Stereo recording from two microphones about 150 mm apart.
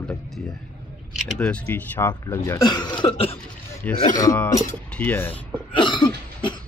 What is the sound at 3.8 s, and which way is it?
Speech, 10° left (ahead or behind).